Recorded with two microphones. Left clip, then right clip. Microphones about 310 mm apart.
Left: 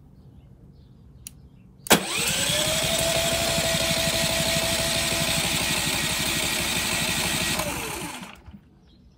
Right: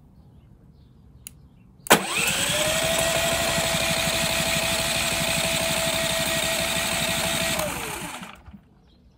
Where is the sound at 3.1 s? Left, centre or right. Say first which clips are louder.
Right 1 dB; centre.